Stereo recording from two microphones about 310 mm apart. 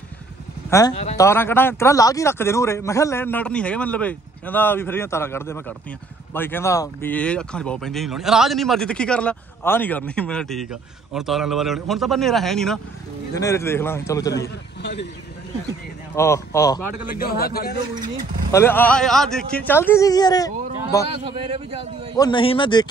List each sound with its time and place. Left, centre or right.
0.7 s speech: centre
0.9 s speech: left
1.2 s a man's voice: centre
14.8 s speech: left
16.2 s a man's voice: centre
17.1 s a man's voice: left
18.5 s a man's voice: centre
21.2 s a man's voice: centre
22.1 s a man's voice: centre